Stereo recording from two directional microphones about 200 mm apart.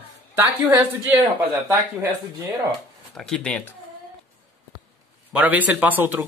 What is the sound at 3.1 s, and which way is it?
Speech, centre (ahead or behind).